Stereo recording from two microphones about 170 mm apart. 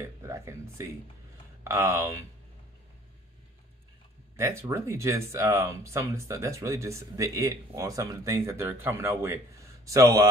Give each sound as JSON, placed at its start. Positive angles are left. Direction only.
{"t": 0.0, "sound": "speech", "side_deg": -15}
{"t": 4.4, "sound": "speech", "side_deg": -15}